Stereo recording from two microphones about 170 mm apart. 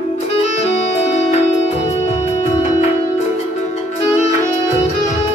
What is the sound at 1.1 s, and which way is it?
Music, 40° left (ahead or behind).